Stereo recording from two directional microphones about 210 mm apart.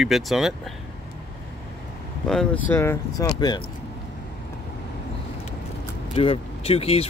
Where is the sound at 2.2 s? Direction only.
5° left (ahead or behind); by 3.6 s 20° left (ahead or behind).